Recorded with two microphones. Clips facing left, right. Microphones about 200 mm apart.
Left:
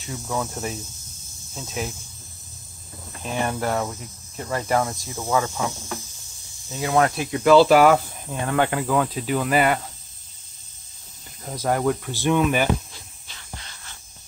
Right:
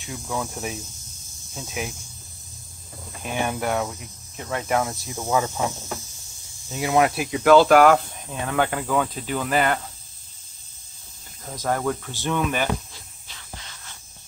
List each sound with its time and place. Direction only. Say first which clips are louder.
0.0 s speech: left 2 dB; 5° left (ahead or behind)
1.6 s speech: left 1 dB; 10° right (ahead or behind)
3.3 s speech: even; 5° right (ahead or behind)
5.1 s speech: even; 15° right (ahead or behind)
6.7 s speech: even; 15° right (ahead or behind)
7.1 s speech: even; 5° right (ahead or behind)
11.5 s speech: left 3 dB; 10° left (ahead or behind)